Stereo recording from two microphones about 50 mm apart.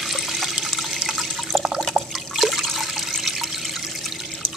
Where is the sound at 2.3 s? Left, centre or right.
Centre.